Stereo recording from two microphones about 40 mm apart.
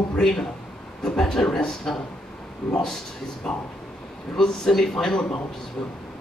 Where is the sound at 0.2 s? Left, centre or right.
Centre.